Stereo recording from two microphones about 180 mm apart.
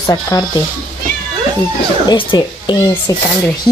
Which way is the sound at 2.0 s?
25° left (ahead or behind).